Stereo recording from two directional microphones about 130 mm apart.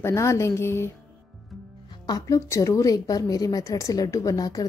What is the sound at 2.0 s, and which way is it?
A woman's voice, 25° left (ahead or behind).